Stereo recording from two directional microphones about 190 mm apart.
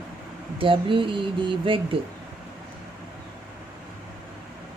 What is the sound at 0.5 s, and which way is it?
Speech, 25° right (ahead or behind).